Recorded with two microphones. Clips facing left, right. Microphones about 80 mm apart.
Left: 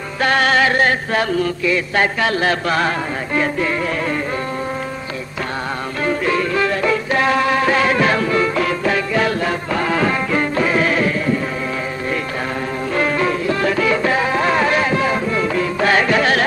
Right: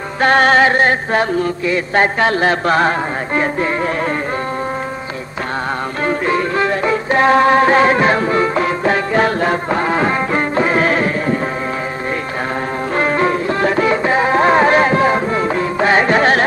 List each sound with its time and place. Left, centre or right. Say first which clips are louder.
0.2 s music: right 4 dB; right
6.0 s music: right 1 dB; right
12.9 s music: right 3 dB; right